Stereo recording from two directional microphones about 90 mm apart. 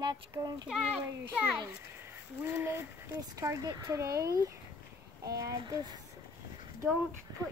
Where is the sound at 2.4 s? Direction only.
25° right (ahead or behind).